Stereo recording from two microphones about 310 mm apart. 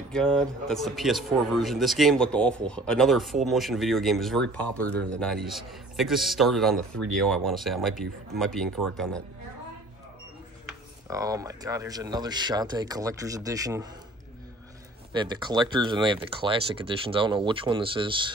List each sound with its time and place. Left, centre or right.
0.1 s speech: centre
10.7 s speech: centre
15.1 s speech: centre